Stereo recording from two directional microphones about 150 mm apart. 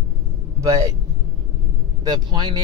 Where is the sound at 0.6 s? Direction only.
25° right (ahead or behind).